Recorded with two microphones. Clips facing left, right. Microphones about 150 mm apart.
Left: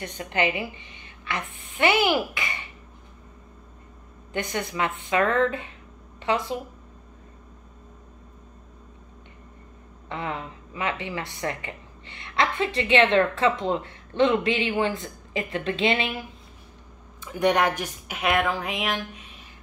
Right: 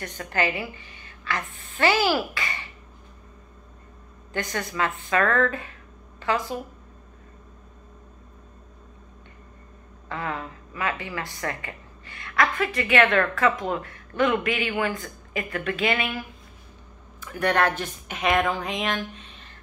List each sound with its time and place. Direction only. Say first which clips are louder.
0.2 s a woman's voice: left 1 dB; 20° left (ahead or behind)
4.3 s speech: left 1 dB; 20° left (ahead or behind)
10.0 s a woman's voice: even; 25° left (ahead or behind)
17.2 s speech: left 1 dB; 20° left (ahead or behind)